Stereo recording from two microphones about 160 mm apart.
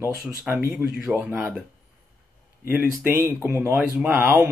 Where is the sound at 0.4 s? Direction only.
15° right (ahead or behind).